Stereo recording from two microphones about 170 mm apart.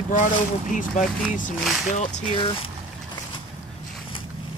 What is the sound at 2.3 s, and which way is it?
Speech, 30° left (ahead or behind).